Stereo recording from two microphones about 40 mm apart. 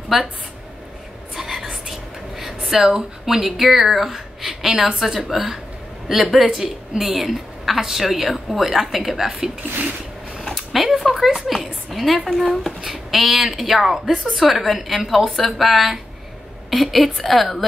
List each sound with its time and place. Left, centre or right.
1.3 s whispering: centre
4.7 s a woman's voice: centre
5.0 s a woman's voice: centre
10.5 s a sound: centre
12.8 s speech: centre